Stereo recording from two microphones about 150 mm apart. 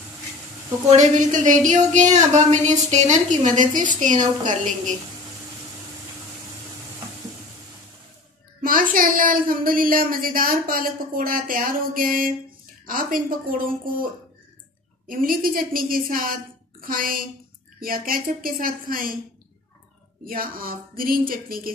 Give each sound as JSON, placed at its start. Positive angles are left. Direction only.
{"t": 0.8, "sound": "a woman's voice", "side_deg": -55}
{"t": 8.6, "sound": "speech", "side_deg": -70}
{"t": 15.0, "sound": "speech", "side_deg": -70}
{"t": 20.2, "sound": "speech", "side_deg": -70}